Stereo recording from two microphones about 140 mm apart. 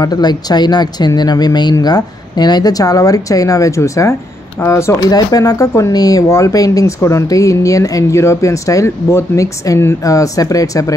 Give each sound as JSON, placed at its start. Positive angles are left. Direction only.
{"t": 0.0, "sound": "speech", "side_deg": 30}